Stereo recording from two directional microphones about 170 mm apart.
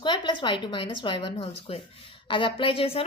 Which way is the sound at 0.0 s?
30° left (ahead or behind).